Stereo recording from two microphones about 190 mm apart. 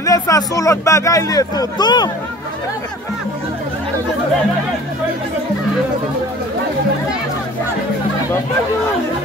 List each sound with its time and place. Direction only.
0.0 s speech: 15° left (ahead or behind)